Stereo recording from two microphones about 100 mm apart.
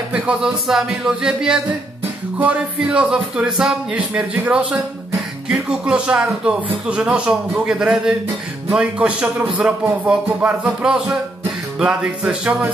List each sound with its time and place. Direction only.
0.1 s speech: 10° right (ahead or behind)